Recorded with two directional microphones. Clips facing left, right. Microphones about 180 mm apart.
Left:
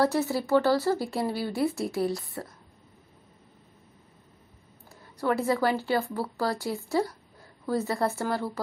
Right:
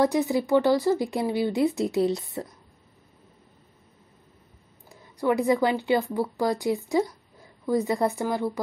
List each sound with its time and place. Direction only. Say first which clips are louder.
0.0 s speech: right 3 dB; 15° right (ahead or behind)
4.8 s speech: right 3 dB; 15° right (ahead or behind)